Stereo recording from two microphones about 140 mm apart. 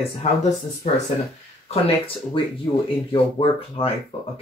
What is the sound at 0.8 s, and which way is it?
Speech, 60° left (ahead or behind).